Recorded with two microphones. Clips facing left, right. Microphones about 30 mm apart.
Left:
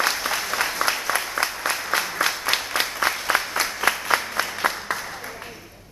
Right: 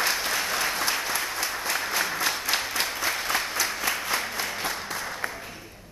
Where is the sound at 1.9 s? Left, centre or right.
Left.